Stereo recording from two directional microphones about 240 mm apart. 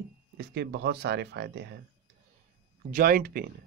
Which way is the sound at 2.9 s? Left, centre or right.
Right.